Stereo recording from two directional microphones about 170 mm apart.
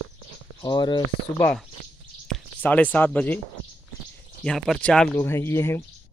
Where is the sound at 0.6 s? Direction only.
25° left (ahead or behind).